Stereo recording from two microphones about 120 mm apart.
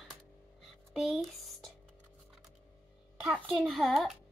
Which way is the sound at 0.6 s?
Centre (ahead or behind).